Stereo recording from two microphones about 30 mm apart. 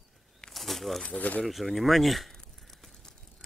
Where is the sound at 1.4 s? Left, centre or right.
Centre.